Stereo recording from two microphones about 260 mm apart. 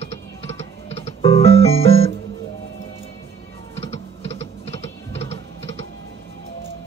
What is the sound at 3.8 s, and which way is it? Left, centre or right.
Music, left.